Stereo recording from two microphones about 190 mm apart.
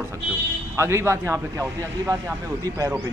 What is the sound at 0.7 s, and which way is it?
A man's voice, 15° right (ahead or behind).